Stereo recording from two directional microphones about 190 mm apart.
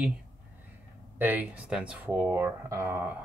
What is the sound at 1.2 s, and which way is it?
Speech, 10° right (ahead or behind).